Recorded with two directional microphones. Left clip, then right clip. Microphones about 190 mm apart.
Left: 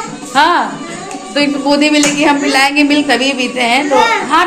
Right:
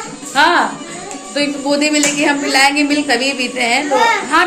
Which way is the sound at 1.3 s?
Centre (ahead or behind).